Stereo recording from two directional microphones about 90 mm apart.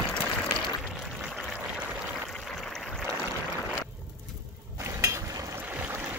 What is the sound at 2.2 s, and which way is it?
Stream, 5° left (ahead or behind).